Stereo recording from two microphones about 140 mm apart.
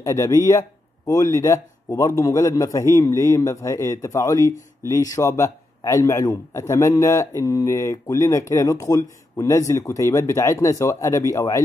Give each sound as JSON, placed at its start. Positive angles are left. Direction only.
{"t": 0.0, "sound": "speech", "side_deg": 20}